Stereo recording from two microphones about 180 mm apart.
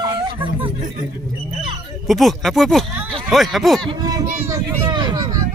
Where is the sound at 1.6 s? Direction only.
Centre (ahead or behind).